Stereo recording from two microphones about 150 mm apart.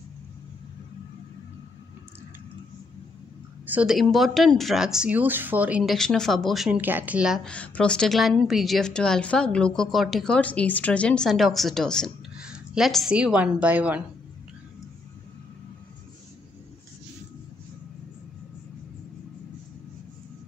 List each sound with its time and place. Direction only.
3.6 s a woman's voice: 10° right (ahead or behind)
5.9 s a woman's voice: 5° left (ahead or behind)
6.8 s speech: 10° right (ahead or behind)
7.4 s a woman's voice: 10° left (ahead or behind); by 14.0 s 10° right (ahead or behind)